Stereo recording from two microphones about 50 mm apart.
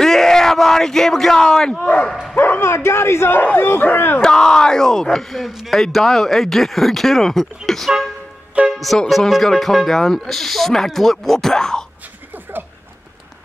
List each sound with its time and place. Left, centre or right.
0.0 s a sound: centre
1.4 s speech: centre
1.7 s speech: left
2.3 s speech: left
2.7 s speech: left
4.2 s speech: centre